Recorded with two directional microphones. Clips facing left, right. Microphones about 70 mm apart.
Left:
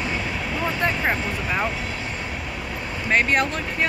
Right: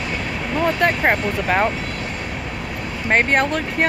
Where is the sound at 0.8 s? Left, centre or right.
Right.